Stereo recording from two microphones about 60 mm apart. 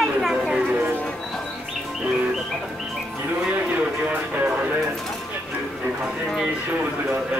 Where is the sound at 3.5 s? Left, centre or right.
Right.